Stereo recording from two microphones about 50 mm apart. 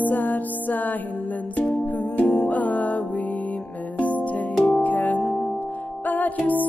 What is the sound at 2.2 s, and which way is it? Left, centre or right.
Music, left.